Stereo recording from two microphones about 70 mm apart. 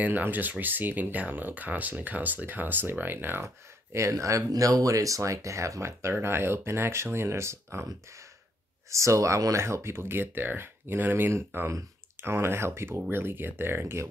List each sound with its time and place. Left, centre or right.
0.0 s speech: right
3.4 s speech: right
8.9 s speech: right